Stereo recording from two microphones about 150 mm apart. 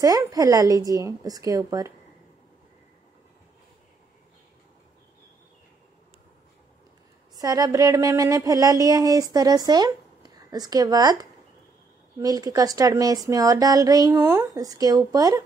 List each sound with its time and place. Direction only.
0.0 s speech: 25° right (ahead or behind)
7.3 s speech: 25° right (ahead or behind)